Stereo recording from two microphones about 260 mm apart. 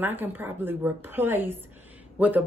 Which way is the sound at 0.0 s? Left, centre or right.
Centre.